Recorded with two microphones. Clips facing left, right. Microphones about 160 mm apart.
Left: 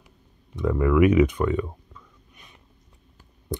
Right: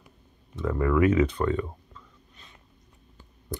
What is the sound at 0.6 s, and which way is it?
Speech, 15° left (ahead or behind).